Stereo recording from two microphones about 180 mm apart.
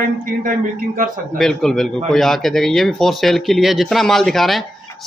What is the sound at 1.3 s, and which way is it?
A man's voice, centre (ahead or behind).